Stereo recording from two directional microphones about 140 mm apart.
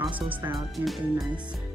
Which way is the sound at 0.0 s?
10° right (ahead or behind).